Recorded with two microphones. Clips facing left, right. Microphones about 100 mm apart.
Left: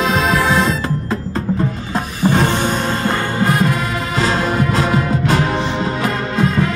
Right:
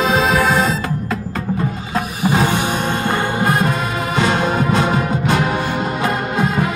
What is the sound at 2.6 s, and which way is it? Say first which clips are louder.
Music: left 1 dB; 15° right (ahead or behind).